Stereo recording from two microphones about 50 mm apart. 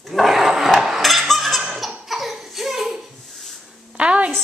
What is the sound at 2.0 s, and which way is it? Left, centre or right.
Laughter, centre.